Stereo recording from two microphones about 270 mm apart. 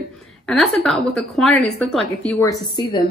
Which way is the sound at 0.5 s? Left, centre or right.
Centre.